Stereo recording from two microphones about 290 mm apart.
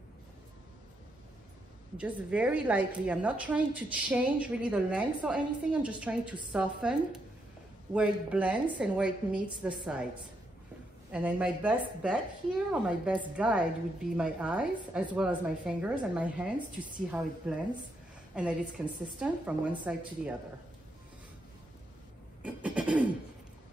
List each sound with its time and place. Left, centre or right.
2.0 s a woman's voice: centre
11.1 s a woman's voice: centre
22.4 s a sound: centre